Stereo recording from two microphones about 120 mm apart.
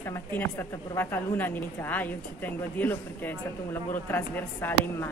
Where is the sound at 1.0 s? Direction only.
15° left (ahead or behind).